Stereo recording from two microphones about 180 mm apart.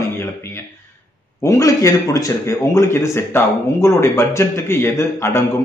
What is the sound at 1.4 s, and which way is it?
A man's voice, 20° left (ahead or behind).